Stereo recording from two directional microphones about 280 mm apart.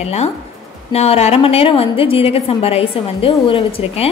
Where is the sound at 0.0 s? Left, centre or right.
Left.